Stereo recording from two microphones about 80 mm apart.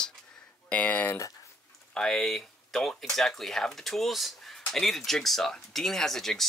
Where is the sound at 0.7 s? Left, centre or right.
Centre.